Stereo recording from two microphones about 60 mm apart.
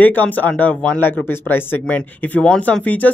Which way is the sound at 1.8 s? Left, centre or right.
Left.